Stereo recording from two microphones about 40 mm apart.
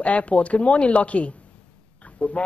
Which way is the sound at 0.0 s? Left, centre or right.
Left.